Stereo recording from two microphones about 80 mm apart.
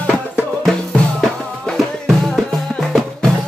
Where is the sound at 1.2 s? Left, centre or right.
Centre.